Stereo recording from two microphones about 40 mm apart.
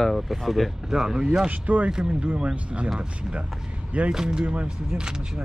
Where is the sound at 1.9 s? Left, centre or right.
Right.